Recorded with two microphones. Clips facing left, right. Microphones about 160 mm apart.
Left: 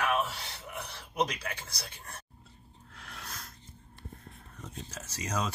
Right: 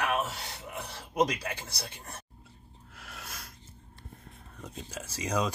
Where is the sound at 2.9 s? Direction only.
5° right (ahead or behind).